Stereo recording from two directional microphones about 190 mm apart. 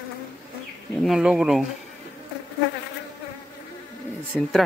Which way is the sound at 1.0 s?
Centre (ahead or behind).